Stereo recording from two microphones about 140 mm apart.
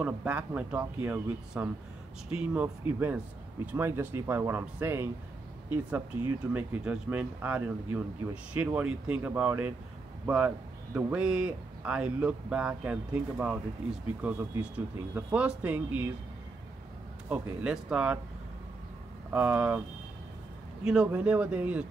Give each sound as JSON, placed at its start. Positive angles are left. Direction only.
{"t": 0.0, "sound": "speech", "side_deg": -10}
{"t": 17.3, "sound": "speech", "side_deg": -10}
{"t": 19.3, "sound": "speech", "side_deg": -10}
{"t": 20.8, "sound": "speech", "side_deg": -5}